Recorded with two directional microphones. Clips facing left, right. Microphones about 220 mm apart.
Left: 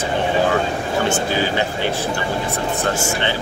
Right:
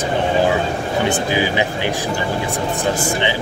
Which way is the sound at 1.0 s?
15° right (ahead or behind).